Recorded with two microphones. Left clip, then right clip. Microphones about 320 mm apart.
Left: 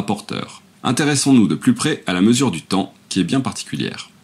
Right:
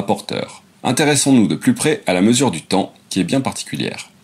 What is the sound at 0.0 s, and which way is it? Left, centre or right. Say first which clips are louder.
Speech: right 4 dB; centre.